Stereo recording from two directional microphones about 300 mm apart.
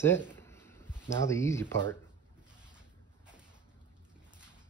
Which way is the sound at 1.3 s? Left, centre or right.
Centre.